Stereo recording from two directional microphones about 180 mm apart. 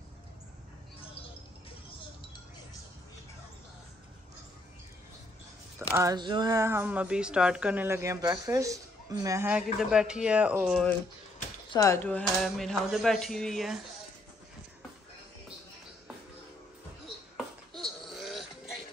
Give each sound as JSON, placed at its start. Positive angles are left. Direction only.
{"t": 5.8, "sound": "speech", "side_deg": -15}
{"t": 9.5, "sound": "speech", "side_deg": -5}
{"t": 11.7, "sound": "speech", "side_deg": 15}
{"t": 17.7, "sound": "a sound", "side_deg": 0}